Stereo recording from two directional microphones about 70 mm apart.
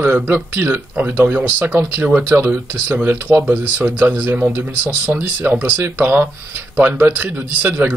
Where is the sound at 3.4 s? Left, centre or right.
Right.